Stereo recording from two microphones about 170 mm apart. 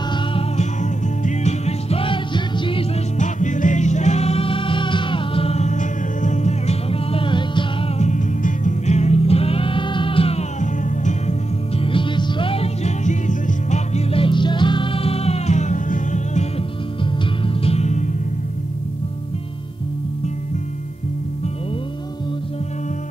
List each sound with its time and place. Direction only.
0.1 s music: 35° left (ahead or behind)
3.2 s music: 45° left (ahead or behind); by 7.6 s 30° left (ahead or behind)
8.0 s music: 45° left (ahead or behind)
11.8 s music: 30° left (ahead or behind); by 16.4 s 45° left (ahead or behind)
17.6 s music: 35° left (ahead or behind)